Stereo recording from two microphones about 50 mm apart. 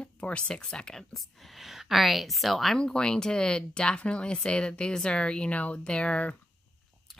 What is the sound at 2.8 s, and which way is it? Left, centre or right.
Speech, centre.